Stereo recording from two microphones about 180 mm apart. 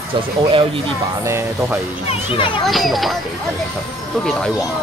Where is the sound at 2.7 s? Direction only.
Centre (ahead or behind).